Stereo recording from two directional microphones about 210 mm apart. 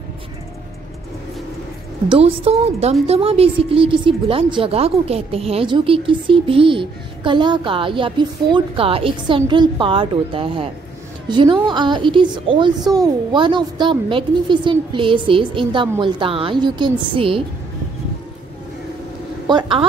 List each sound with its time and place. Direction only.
2.0 s a woman's voice: 25° right (ahead or behind)
19.4 s a woman's voice: 20° right (ahead or behind)